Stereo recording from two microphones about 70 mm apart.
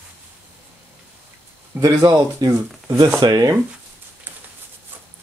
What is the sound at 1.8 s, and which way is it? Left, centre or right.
Speech, right.